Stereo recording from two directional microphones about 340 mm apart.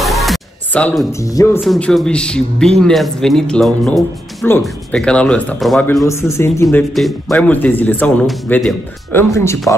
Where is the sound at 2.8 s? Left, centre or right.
Centre.